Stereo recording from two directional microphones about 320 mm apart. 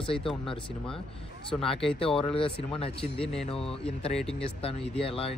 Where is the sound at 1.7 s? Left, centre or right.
Centre.